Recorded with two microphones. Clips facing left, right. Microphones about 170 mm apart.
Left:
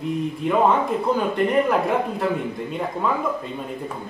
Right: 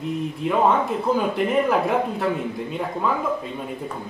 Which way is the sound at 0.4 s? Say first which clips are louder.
Even; centre (ahead or behind).